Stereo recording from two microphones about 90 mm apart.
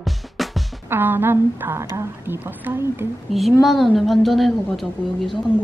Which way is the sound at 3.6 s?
Centre (ahead or behind).